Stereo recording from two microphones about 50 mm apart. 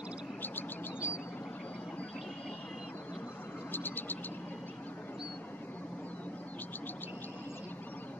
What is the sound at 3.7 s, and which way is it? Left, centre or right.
Vehicle, left.